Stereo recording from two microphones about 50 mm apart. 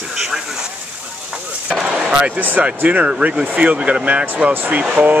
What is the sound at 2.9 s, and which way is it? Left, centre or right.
Speech, right.